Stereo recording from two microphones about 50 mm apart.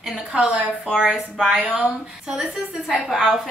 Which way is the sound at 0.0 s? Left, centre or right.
Centre.